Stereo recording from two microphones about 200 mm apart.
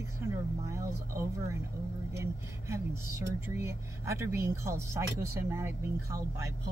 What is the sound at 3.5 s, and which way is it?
Speech, 15° right (ahead or behind).